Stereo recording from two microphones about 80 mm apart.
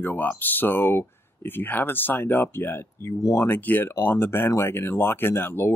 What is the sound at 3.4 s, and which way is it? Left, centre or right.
Speech, left.